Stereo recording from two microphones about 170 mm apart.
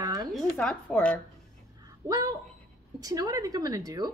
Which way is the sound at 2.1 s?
20° right (ahead or behind).